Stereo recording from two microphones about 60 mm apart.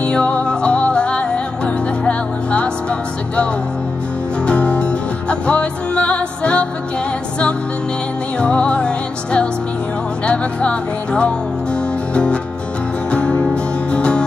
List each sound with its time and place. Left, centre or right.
0.0 s music: left
4.5 s music: centre
8.4 s music: centre